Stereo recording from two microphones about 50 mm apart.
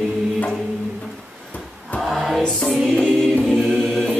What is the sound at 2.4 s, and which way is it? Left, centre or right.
Music, centre.